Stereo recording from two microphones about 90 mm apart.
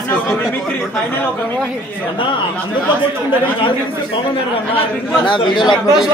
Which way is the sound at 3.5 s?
75° left (ahead or behind).